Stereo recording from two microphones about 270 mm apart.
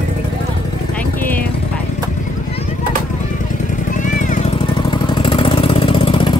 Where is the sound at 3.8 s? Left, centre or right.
Left.